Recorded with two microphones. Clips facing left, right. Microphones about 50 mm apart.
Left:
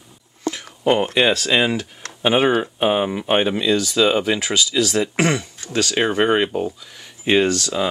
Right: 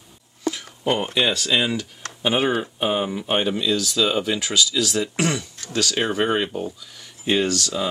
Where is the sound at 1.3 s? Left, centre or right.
Left.